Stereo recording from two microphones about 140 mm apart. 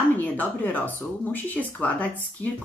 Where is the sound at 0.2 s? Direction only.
10° left (ahead or behind).